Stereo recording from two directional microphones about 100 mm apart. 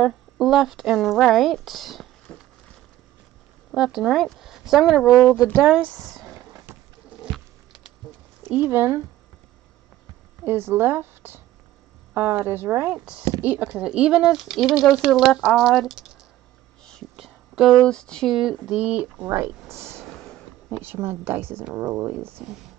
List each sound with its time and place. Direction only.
0.0 s a woman's voice: 5° right (ahead or behind)
3.7 s speech: 5° right (ahead or behind)
5.9 s speech: 5° left (ahead or behind)
6.7 s boat: 20° right (ahead or behind)
7.2 s a sound: 5° right (ahead or behind)
8.5 s speech: 25° right (ahead or behind)
10.4 s a woman's voice: 20° right (ahead or behind); by 16.1 s 5° right (ahead or behind)
17.2 s a sound: 5° right (ahead or behind)
17.7 s speech: 10° left (ahead or behind)
18.3 s speech: 5° right (ahead or behind)
19.2 s speech: 25° right (ahead or behind)
19.7 s a sound: 25° right (ahead or behind)
20.8 s speech: 20° right (ahead or behind)